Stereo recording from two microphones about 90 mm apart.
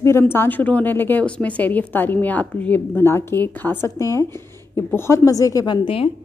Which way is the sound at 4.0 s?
35° left (ahead or behind).